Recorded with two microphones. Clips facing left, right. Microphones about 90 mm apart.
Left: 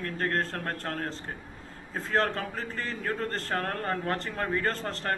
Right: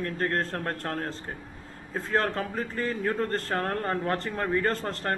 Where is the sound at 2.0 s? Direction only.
30° right (ahead or behind).